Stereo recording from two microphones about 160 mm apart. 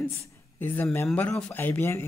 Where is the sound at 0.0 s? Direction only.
15° left (ahead or behind).